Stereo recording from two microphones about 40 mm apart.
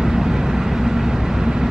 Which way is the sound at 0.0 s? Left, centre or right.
Centre.